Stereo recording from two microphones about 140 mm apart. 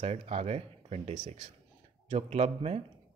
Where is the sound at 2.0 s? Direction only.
45° right (ahead or behind).